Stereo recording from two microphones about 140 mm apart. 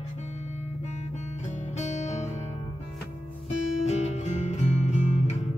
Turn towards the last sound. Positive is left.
turn(degrees=55)  # may be behind; listen again after turning